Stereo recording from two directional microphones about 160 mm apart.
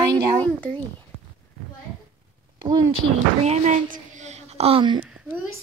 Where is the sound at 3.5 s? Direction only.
55° right (ahead or behind); by 5.0 s 35° right (ahead or behind).